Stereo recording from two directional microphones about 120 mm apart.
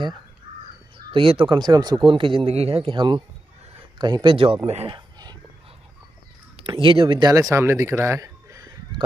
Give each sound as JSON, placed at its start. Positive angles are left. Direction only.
{"t": 1.1, "sound": "speech", "side_deg": -50}
{"t": 1.4, "sound": "speech", "side_deg": -35}
{"t": 4.8, "sound": "a sound", "side_deg": -40}
{"t": 6.5, "sound": "speech", "side_deg": -45}